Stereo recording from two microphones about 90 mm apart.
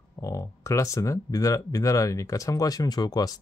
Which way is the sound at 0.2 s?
35° left (ahead or behind).